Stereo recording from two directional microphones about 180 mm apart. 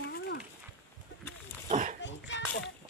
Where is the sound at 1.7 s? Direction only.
40° right (ahead or behind).